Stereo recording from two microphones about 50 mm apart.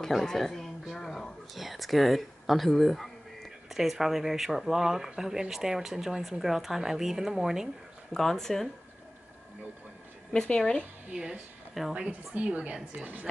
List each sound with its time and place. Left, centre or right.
0.2 s speech: centre
8.1 s speech: centre
10.3 s speech: left
11.1 s a woman's voice: centre; by 13.3 s right